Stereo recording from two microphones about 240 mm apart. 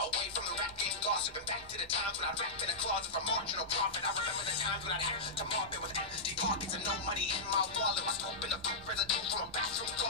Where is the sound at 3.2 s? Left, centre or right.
Left.